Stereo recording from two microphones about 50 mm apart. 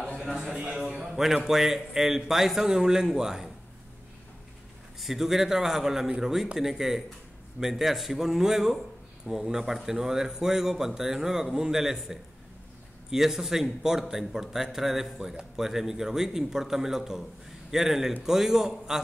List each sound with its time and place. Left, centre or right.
0.5 s speech: right
0.7 s a man's voice: centre
5.0 s a man's voice: centre